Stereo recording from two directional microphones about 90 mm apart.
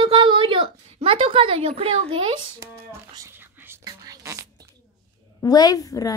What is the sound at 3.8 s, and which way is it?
Speech, 45° right (ahead or behind).